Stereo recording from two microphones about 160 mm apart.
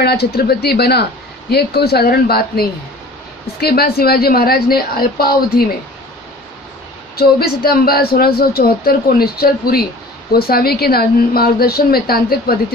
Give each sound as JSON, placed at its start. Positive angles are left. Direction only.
{"t": 0.0, "sound": "a woman's voice", "side_deg": 85}
{"t": 7.2, "sound": "a woman's voice", "side_deg": 75}